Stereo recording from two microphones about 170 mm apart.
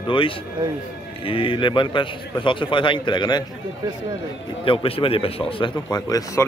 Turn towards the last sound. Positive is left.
turn(degrees=20)  # may be behind; listen again after turning